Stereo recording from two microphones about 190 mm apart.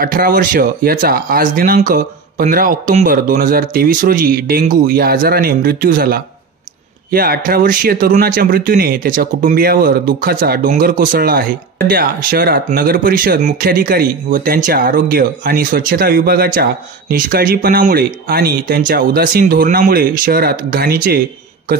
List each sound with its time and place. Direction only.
0.0 s speech: 50° right (ahead or behind)